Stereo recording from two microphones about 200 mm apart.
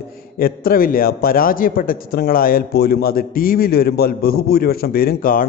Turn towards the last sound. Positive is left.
turn(degrees=45)  # may be behind; listen again after turning